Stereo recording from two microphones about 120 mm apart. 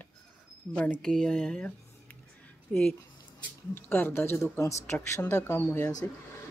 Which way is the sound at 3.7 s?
20° left (ahead or behind).